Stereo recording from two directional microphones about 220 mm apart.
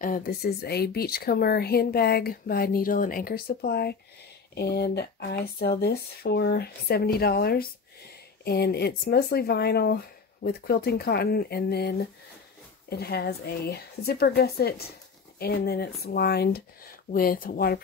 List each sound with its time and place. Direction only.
0.0 s speech: 40° left (ahead or behind)